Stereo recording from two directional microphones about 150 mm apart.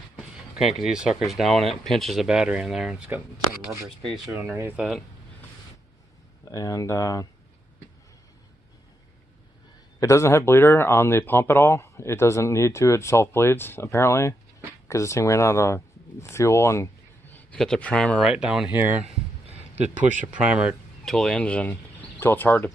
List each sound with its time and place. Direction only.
0.7 s speech: 5° right (ahead or behind)
4.3 s speech: 15° right (ahead or behind)
6.5 s speech: 20° left (ahead or behind)
9.9 s speech: 20° left (ahead or behind); by 18.7 s 5° right (ahead or behind)
18.7 s speech: 15° right (ahead or behind)
19.5 s a sound: 45° right (ahead or behind)
20.2 s speech: 10° right (ahead or behind); by 22.7 s 15° left (ahead or behind)